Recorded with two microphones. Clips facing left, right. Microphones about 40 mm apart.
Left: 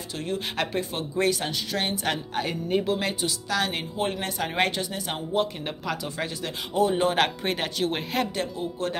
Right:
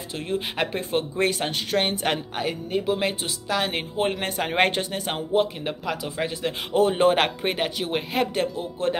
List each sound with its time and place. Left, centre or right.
0.2 s speech: right
2.9 s speech: centre; by 5.2 s right
5.3 s speech: centre
6.7 s speech: right
7.5 s speech: centre
8.2 s speech: right